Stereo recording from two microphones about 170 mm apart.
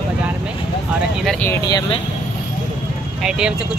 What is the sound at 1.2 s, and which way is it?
Speech, 10° left (ahead or behind).